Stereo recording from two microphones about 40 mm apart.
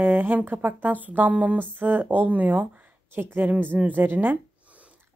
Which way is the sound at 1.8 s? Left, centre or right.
Right.